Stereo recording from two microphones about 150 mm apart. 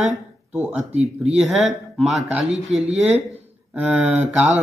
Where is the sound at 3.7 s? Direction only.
5° right (ahead or behind).